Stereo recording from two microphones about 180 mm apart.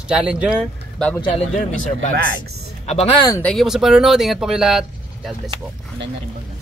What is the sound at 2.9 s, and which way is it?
Speech, 35° left (ahead or behind).